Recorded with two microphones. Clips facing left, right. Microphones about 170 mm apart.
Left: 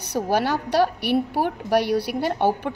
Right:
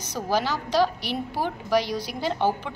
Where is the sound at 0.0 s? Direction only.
65° left (ahead or behind).